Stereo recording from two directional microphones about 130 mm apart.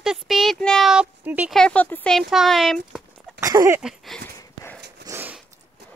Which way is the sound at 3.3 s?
25° right (ahead or behind).